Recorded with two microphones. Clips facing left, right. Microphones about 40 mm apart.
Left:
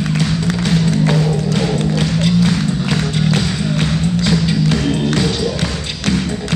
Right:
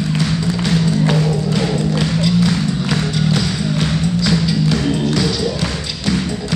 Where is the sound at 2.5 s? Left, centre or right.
Centre.